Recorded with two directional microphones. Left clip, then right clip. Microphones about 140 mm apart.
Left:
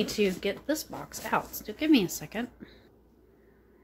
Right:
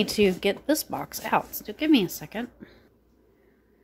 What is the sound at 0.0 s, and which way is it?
A woman's voice, 35° right (ahead or behind).